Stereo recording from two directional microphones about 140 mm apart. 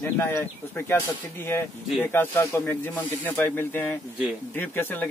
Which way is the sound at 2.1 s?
15° left (ahead or behind).